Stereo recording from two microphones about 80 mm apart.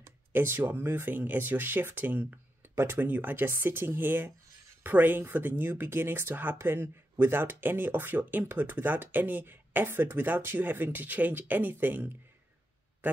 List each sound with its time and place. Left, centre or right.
0.3 s speech: right